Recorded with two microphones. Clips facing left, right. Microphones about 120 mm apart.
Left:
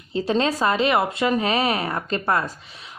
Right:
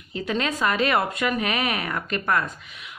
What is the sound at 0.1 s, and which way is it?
A woman's voice, 30° left (ahead or behind).